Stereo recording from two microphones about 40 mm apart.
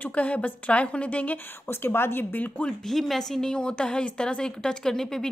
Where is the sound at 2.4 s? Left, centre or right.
Left.